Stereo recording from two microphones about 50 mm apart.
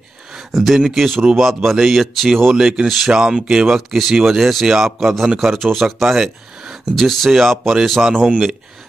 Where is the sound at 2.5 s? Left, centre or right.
Centre.